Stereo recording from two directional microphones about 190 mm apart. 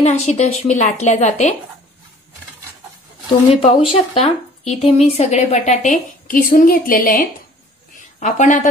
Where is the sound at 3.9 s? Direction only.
30° left (ahead or behind).